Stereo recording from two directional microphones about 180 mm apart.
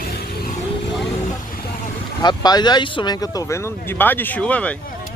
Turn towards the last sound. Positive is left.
turn(degrees=5)  # may be behind; listen again after turning